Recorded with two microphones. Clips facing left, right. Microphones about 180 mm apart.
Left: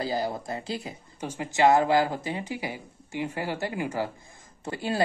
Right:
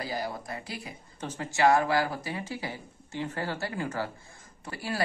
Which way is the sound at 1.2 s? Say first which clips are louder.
Left 2 dB; 15° left (ahead or behind).